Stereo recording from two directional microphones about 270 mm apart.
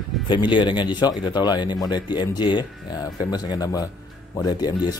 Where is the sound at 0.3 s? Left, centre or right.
Centre.